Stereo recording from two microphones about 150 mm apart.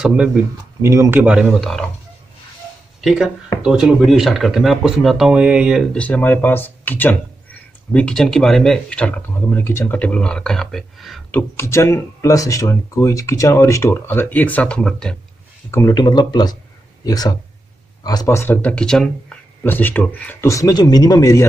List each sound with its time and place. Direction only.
0.0 s speech: 5° right (ahead or behind)
0.8 s speech: 20° right (ahead or behind)
1.2 s speech: 5° right (ahead or behind)
3.0 s speech: centre (ahead or behind)
5.9 s speech: 10° left (ahead or behind)
11.3 s speech: 15° left (ahead or behind)
15.7 s speech: 20° left (ahead or behind)
16.0 s speech: 30° left (ahead or behind)